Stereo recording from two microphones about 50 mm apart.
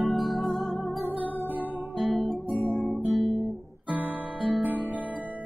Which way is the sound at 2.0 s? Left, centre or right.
Centre.